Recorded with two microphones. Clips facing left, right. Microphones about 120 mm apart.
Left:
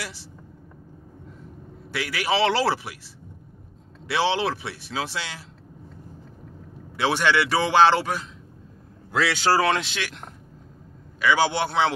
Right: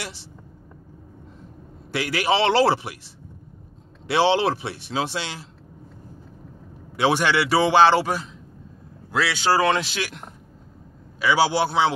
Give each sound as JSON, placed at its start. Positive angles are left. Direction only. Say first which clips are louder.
{"t": 2.0, "sound": "a man's voice", "louder": "right 2 dB", "side_deg": -30}
{"t": 4.1, "sound": "a man's voice", "louder": "right 4 dB", "side_deg": -30}
{"t": 7.0, "sound": "speech", "louder": "right 2 dB", "side_deg": -15}